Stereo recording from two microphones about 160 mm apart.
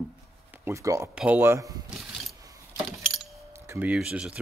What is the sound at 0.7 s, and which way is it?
Speech, 20° right (ahead or behind).